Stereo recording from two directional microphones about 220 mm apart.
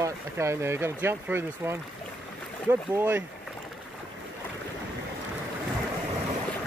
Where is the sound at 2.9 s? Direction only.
10° right (ahead or behind).